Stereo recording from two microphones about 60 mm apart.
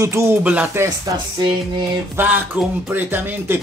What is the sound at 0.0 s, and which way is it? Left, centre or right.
Speech, right.